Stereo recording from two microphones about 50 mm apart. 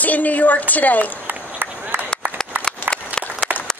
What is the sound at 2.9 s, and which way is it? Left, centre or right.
Applause, centre.